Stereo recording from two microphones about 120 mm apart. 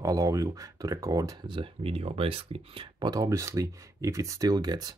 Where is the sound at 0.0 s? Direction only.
30° right (ahead or behind).